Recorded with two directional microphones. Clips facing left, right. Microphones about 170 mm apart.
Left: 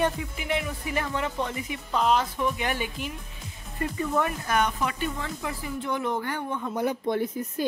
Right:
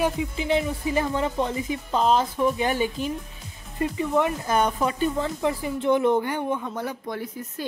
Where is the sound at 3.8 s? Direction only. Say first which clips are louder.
Right 4 dB; 20° right (ahead or behind).